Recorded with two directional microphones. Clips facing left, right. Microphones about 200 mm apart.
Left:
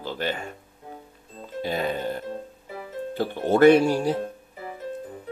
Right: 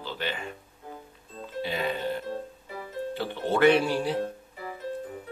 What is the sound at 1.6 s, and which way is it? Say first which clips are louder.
Speech: left 3 dB; 40° left (ahead or behind).